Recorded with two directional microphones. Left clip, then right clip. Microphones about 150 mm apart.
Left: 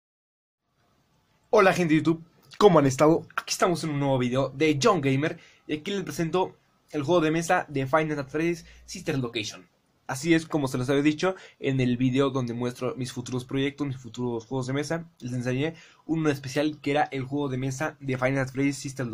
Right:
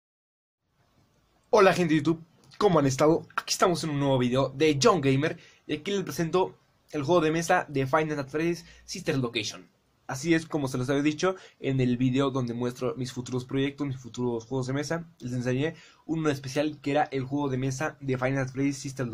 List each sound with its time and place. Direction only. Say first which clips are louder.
1.5 s speech: left 1 dB; 10° left (ahead or behind)
2.5 s speech: left 5 dB; 25° left (ahead or behind); by 9.6 s centre (ahead or behind)
10.0 s speech: left 2 dB; 25° left (ahead or behind)